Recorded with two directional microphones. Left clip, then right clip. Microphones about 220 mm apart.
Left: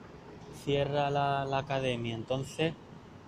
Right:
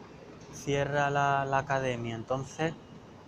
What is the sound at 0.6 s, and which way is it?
Speech, 5° left (ahead or behind).